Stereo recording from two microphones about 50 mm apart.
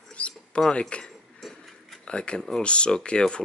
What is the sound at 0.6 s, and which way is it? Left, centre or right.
Speech, centre.